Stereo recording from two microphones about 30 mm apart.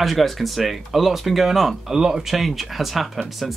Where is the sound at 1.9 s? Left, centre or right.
Centre.